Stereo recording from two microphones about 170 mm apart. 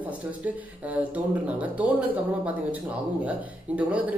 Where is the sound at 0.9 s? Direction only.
10° right (ahead or behind).